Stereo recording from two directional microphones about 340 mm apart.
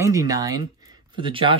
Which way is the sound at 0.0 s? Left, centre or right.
Centre.